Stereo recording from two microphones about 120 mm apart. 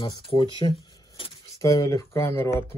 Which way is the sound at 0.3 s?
45° left (ahead or behind).